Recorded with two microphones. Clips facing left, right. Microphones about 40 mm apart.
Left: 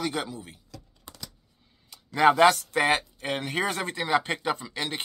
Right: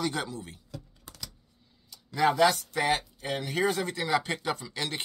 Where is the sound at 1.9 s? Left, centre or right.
Left.